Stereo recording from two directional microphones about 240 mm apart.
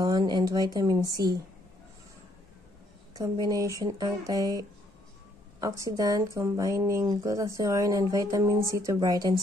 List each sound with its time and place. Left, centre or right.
0.0 s speech: centre
3.2 s speech: centre